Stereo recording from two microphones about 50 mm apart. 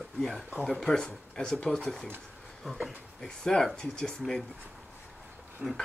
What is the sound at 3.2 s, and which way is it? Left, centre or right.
Speech, centre.